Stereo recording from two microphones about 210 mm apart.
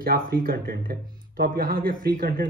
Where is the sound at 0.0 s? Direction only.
45° right (ahead or behind).